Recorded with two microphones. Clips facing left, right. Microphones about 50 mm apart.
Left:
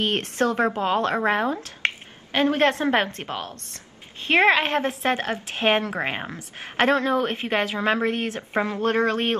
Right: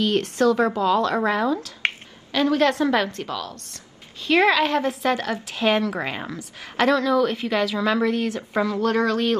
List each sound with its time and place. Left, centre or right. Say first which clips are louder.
0.0 s a woman's voice: right 3 dB; left